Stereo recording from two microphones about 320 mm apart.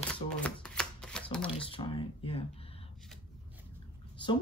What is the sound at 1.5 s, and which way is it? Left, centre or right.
Speech, centre.